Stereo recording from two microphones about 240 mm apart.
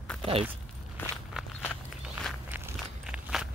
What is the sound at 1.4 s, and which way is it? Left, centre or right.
Walk, centre.